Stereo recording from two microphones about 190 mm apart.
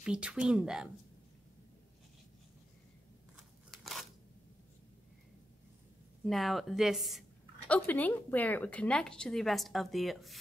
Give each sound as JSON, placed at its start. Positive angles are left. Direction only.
{"t": 0.0, "sound": "a woman's voice", "side_deg": -5}
{"t": 3.7, "sound": "a sound", "side_deg": 0}
{"t": 6.2, "sound": "a woman's voice", "side_deg": 0}